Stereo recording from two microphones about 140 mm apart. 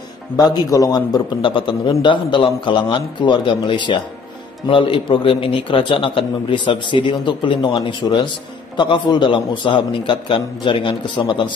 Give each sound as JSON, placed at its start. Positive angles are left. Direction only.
{"t": 0.4, "sound": "a man's voice", "side_deg": 25}